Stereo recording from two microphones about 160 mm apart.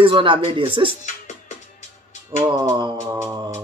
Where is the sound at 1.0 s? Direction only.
50° left (ahead or behind).